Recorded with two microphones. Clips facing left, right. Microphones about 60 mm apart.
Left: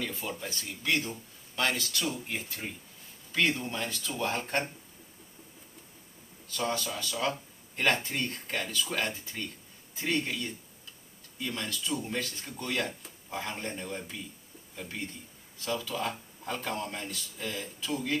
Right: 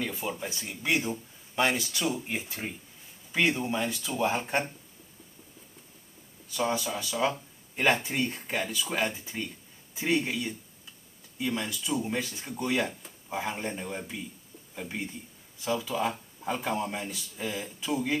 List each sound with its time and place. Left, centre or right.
0.0 s speech: centre
6.5 s speech: centre